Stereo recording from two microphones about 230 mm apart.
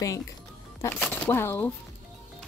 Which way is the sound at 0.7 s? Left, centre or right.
Centre.